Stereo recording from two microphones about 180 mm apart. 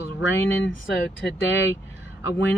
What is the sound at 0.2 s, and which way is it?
Speech, 80° left.